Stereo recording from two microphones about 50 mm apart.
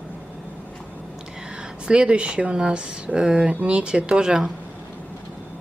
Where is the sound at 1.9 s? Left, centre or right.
Right.